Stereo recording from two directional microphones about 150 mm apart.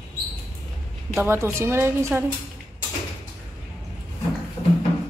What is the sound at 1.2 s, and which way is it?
A woman's voice, 15° right (ahead or behind).